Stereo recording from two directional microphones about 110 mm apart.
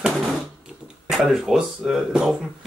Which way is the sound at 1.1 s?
Centre (ahead or behind).